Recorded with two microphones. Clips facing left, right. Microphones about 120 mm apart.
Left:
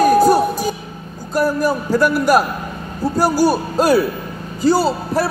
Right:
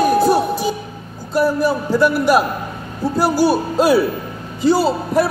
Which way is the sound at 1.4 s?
45° left (ahead or behind).